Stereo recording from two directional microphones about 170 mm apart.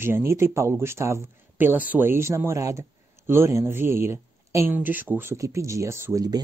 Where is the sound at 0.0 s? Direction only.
15° right (ahead or behind).